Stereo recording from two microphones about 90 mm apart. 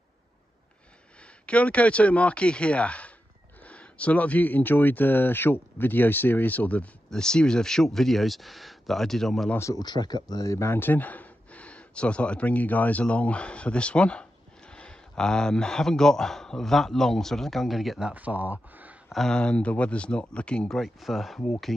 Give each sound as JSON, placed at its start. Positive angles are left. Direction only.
{"t": 1.4, "sound": "a man's voice", "side_deg": 15}
{"t": 9.8, "sound": "a man's voice", "side_deg": 50}
{"t": 18.1, "sound": "speech", "side_deg": -20}
{"t": 19.0, "sound": "a man's voice", "side_deg": 5}